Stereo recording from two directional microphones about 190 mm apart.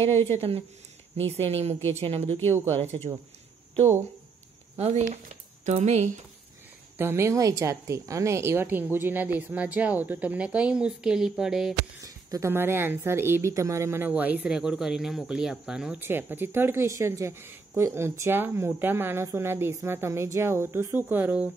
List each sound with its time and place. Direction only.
0.4 s speech: 30° right (ahead or behind)
4.7 s speech: 35° right (ahead or behind)
7.0 s a woman's voice: 15° right (ahead or behind)
12.0 s a woman's voice: 15° right (ahead or behind)